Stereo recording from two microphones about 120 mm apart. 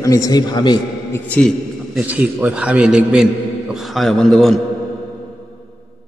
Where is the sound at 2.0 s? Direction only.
15° right (ahead or behind).